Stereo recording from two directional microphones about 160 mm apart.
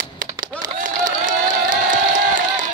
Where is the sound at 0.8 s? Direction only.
55° right (ahead or behind).